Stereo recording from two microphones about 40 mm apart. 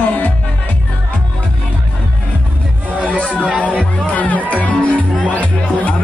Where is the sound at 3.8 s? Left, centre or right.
Left.